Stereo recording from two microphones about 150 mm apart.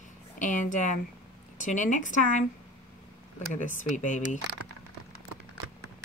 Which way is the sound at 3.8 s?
55° left (ahead or behind).